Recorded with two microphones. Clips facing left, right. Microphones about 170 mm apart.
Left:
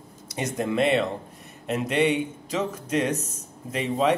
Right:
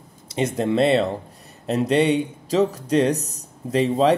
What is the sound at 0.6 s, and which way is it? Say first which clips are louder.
Speech: right 4 dB; 30° right (ahead or behind).